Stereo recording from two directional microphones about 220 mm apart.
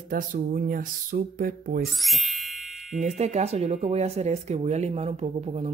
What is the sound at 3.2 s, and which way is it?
Speech, 30° right (ahead or behind).